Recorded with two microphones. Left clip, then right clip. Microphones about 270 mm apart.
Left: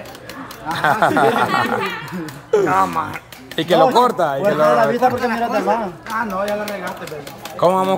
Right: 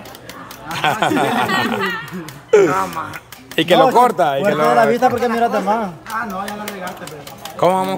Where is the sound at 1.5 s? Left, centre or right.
Centre.